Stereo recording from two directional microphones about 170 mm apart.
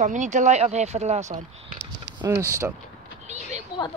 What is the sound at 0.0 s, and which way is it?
Speech, 45° right (ahead or behind).